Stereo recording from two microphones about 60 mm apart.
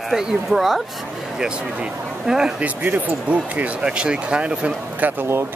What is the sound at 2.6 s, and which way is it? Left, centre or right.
Speech, right.